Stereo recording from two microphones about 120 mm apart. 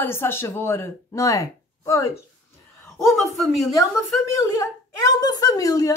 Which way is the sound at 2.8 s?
Centre (ahead or behind).